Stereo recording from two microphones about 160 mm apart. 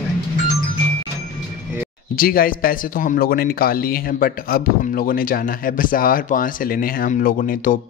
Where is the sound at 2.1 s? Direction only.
65° left (ahead or behind).